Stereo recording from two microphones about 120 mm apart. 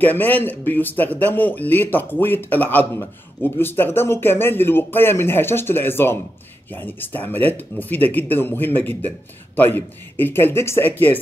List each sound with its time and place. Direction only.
0.0 s speech: 15° left (ahead or behind)